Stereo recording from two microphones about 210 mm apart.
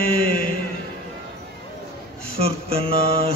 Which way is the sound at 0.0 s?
45° left (ahead or behind).